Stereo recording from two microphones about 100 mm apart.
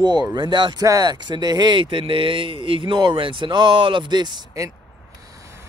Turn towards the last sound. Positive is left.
turn(degrees=-45)  # may be behind; listen again after turning